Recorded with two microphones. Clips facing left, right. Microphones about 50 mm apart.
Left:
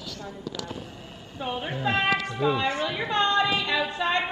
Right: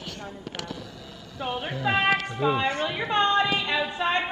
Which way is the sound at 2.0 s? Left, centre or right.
Right.